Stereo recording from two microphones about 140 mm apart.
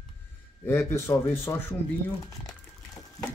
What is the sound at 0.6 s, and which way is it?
Speech, 15° left (ahead or behind).